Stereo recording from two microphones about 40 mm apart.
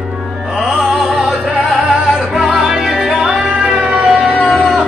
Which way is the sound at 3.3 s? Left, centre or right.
Right.